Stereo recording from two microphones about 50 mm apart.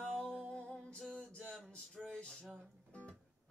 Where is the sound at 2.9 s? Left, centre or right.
Left.